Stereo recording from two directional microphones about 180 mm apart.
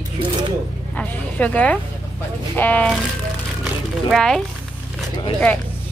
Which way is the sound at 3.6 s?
Centre (ahead or behind).